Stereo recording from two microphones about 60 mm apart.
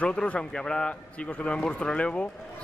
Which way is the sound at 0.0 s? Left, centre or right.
Centre.